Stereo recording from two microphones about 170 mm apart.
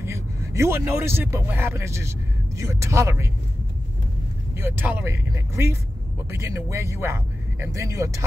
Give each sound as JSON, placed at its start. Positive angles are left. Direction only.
{"t": 0.0, "sound": "speech", "side_deg": -15}
{"t": 4.6, "sound": "speech", "side_deg": -15}